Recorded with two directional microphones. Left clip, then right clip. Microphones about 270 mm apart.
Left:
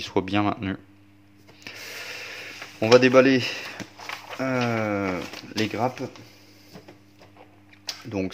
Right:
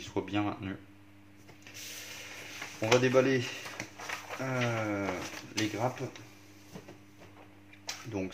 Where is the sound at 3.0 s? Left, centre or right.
Left.